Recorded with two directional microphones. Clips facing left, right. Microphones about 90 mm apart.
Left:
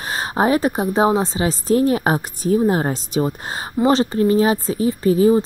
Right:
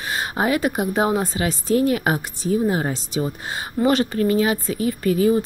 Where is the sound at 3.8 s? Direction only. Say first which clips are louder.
Left 3 dB; 30° left (ahead or behind).